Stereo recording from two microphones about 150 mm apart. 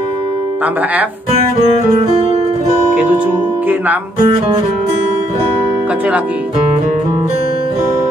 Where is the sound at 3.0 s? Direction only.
10° right (ahead or behind).